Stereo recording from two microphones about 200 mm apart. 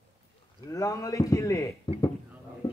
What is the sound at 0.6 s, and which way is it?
A man's voice, 15° left (ahead or behind).